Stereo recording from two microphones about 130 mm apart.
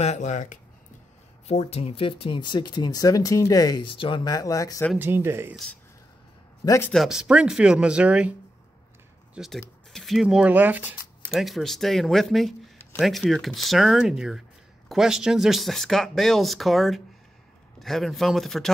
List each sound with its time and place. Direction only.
0.0 s speech: 60° left (ahead or behind)
1.5 s speech: 55° left (ahead or behind); by 4.8 s 25° left (ahead or behind)
4.9 s speech: 15° right (ahead or behind)
6.6 s speech: 25° left (ahead or behind)
6.9 s speech: centre (ahead or behind)
11.3 s speech: centre (ahead or behind)